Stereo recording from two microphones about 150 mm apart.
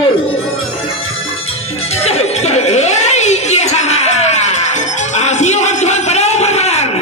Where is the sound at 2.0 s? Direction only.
45° left (ahead or behind).